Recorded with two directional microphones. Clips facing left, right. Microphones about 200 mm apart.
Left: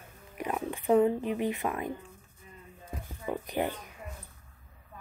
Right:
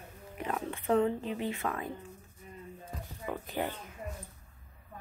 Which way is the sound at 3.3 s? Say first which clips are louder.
Left 4 dB; 15° left (ahead or behind).